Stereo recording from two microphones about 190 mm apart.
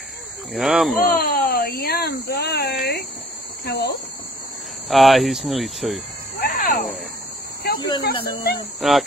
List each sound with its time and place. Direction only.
0.5 s speech: centre (ahead or behind)
1.0 s speech: 50° left (ahead or behind)
4.8 s speech: centre (ahead or behind)
6.5 s a sound: 45° left (ahead or behind)
8.0 s speech: 55° left (ahead or behind)
8.8 s speech: centre (ahead or behind)